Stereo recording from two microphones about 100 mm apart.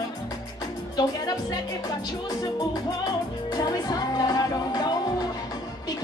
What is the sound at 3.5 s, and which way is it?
Music, 40° left (ahead or behind).